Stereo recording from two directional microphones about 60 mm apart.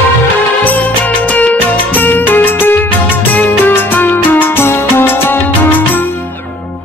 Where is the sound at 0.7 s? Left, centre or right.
Left.